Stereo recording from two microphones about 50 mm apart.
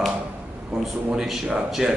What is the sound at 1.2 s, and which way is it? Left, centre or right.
Speech, centre.